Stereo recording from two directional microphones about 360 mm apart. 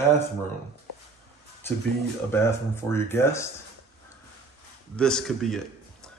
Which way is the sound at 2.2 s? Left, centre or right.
Centre.